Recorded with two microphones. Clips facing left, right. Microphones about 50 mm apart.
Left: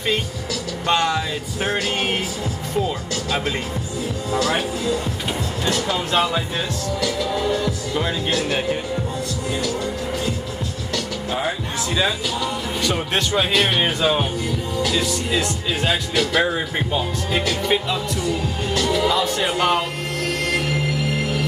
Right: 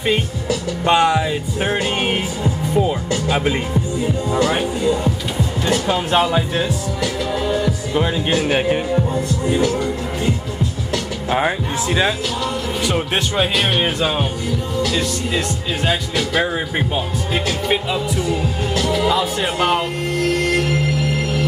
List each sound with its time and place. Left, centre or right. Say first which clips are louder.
0.5 s music: right 5 dB; centre
4.0 s speech: right 3 dB; centre; by 9.8 s right
11.2 s speech: right 7 dB; right
12.8 s speech: right 1 dB; centre